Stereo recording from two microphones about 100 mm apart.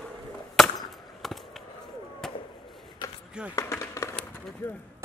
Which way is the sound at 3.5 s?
30° left (ahead or behind).